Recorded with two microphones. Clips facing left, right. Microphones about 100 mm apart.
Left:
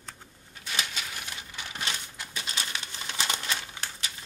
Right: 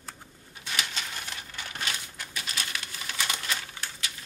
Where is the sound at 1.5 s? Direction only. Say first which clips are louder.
Even; 15° left (ahead or behind).